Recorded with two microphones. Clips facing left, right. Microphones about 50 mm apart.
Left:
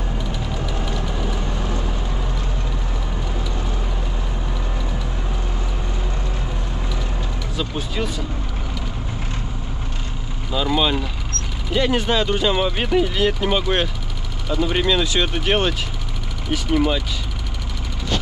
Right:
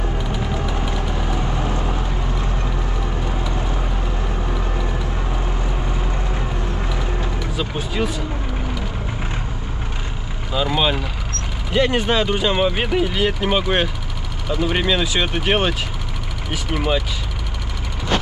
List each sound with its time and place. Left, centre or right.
0.3 s vehicle: centre
7.5 s speech: centre
10.5 s speech: centre